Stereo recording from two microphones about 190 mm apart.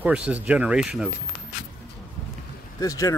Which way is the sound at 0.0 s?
10° right (ahead or behind).